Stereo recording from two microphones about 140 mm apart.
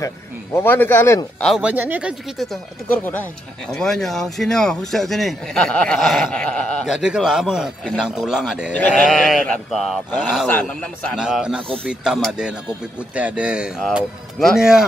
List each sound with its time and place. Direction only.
0.0 s speech: 20° left (ahead or behind)
1.6 s a man's voice: 10° right (ahead or behind); by 6.7 s 5° left (ahead or behind)
6.9 s a man's voice: 5° right (ahead or behind)
8.7 s a man's voice: 5° left (ahead or behind)
11.1 s a man's voice: 5° right (ahead or behind)